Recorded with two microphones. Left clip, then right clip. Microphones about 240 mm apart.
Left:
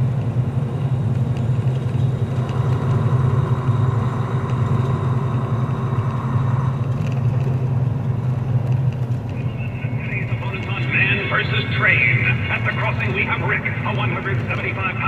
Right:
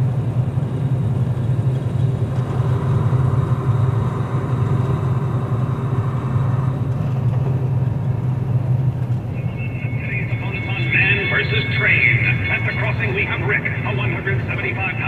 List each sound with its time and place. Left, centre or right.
10.9 s music: right